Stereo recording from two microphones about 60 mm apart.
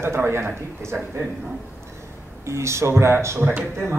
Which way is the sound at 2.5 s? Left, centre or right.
Right.